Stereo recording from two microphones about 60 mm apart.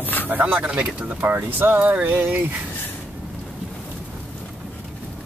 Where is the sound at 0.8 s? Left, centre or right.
Centre.